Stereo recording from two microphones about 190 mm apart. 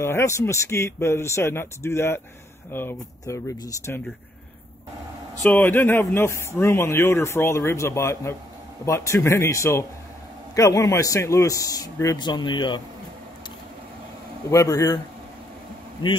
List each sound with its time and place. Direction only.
0.0 s speech: 15° left (ahead or behind)
5.4 s speech: 10° left (ahead or behind); by 12.8 s 25° left (ahead or behind)
14.5 s speech: 15° left (ahead or behind)